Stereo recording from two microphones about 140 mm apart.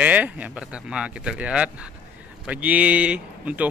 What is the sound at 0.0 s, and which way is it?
A man's voice, 10° right (ahead or behind).